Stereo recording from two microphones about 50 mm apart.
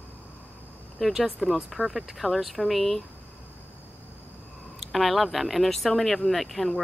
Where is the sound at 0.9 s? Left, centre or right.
Centre.